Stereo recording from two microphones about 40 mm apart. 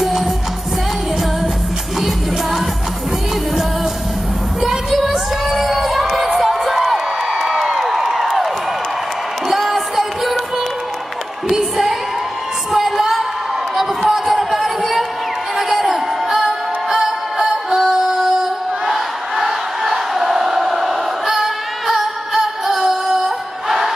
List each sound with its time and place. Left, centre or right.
0.0 s music: centre
4.6 s children shouting: centre
9.5 s music: centre
12.7 s a sound: centre
15.5 s music: centre